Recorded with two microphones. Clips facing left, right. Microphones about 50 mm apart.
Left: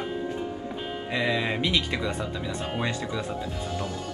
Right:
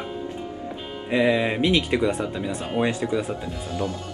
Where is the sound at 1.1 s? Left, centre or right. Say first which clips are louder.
Right 6 dB; centre.